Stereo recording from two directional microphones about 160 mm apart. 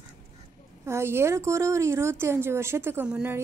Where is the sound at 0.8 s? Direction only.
15° right (ahead or behind).